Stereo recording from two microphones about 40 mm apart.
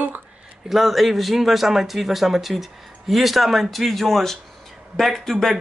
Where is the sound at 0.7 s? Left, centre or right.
Centre.